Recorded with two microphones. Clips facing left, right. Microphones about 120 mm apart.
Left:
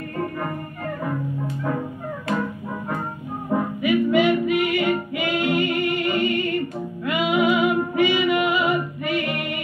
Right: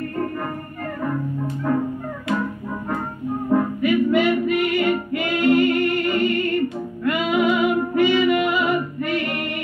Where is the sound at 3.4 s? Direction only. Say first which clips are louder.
Right 3 dB; 10° left (ahead or behind).